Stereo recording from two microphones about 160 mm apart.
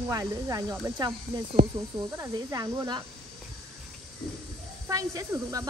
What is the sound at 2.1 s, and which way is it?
Speech, 20° right (ahead or behind).